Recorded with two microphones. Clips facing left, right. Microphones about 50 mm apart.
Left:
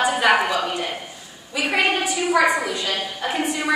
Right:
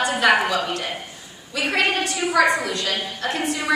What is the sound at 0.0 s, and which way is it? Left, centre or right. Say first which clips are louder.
Speech: even; centre.